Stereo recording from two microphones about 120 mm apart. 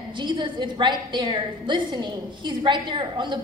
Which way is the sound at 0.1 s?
40° right (ahead or behind).